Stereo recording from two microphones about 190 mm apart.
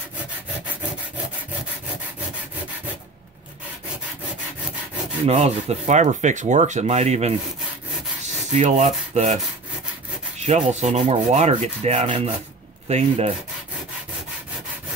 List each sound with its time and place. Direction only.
5.2 s speech: 35° right (ahead or behind)
8.5 s speech: 35° right (ahead or behind)
10.4 s speech: 35° right (ahead or behind)